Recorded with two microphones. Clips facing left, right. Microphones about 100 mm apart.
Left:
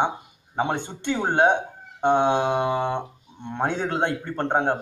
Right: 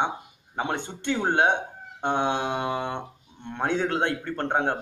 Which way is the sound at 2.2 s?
25° left (ahead or behind).